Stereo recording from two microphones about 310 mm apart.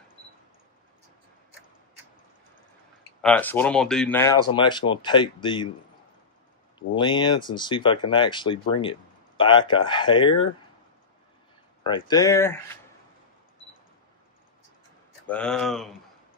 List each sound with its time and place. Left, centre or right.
3.2 s speech: centre
7.0 s speech: centre
11.8 s speech: centre
15.2 s speech: centre